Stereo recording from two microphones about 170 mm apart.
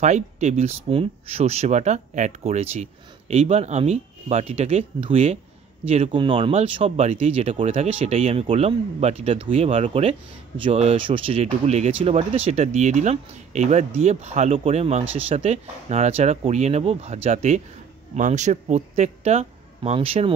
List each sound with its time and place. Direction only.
0.0 s speech: 45° right (ahead or behind)